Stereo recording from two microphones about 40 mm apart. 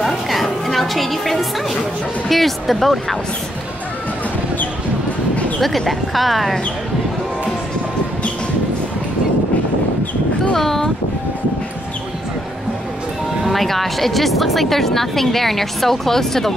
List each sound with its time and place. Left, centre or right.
0.0 s music: centre
2.2 s speech: centre
5.6 s speech: centre
10.5 s speech: centre
13.4 s speech: centre